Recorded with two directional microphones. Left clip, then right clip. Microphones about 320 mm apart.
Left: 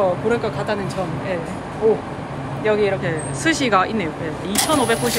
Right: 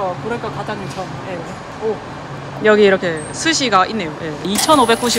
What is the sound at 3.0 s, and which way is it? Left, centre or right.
Speech, centre.